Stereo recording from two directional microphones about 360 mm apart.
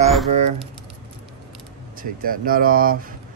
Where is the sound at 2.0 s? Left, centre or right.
Right.